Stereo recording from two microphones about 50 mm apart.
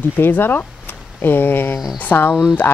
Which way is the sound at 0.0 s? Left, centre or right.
Left.